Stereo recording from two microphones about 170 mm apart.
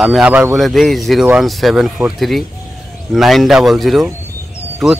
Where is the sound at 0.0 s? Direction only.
5° right (ahead or behind).